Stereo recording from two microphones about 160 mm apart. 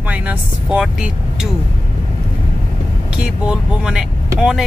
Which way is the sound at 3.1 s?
5° right (ahead or behind).